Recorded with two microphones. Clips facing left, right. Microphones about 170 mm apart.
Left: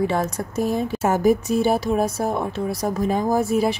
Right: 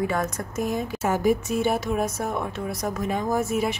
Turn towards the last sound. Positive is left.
turn(degrees=35)  # may be behind; listen again after turning